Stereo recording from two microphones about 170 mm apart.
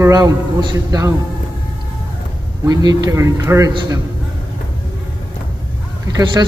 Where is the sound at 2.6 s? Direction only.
20° right (ahead or behind).